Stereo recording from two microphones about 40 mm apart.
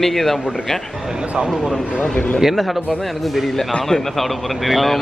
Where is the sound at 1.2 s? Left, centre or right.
Right.